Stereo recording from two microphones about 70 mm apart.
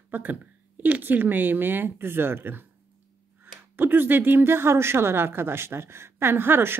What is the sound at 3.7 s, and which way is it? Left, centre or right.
A woman's voice, right.